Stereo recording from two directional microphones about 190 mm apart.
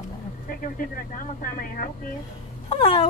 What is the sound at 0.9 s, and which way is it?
Speech, 45° left (ahead or behind).